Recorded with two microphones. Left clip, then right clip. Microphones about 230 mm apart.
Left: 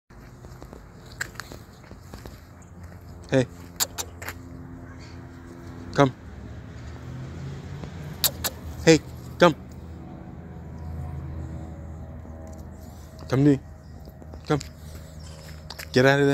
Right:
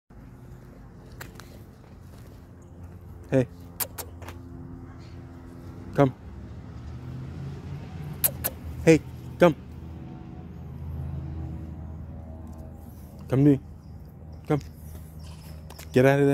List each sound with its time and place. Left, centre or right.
1.1 s biting: centre
3.3 s keys jangling: centre
5.9 s a sound: centre
8.2 s vehicle: centre
13.3 s speech: centre
15.7 s a sound: centre